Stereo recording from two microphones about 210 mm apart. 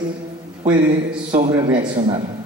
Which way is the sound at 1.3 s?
20° right (ahead or behind).